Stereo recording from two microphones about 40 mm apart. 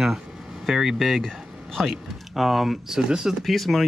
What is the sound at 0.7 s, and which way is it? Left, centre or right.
Speech, centre.